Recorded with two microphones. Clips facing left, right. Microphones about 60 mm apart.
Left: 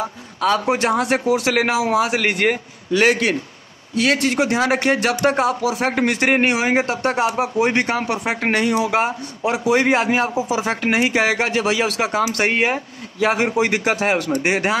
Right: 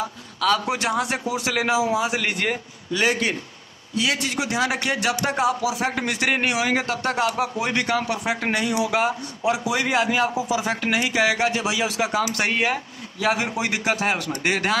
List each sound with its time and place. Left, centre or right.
0.4 s speech: left
1.8 s a man's voice: left
3.9 s speech: left
11.5 s speech: left
14.3 s speech: centre